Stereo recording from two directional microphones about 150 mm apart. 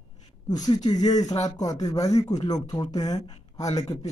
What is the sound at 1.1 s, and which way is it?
Speech, 50° left (ahead or behind).